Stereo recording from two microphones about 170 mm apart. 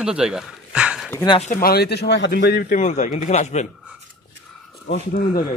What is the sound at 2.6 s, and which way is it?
Speech, 45° left (ahead or behind).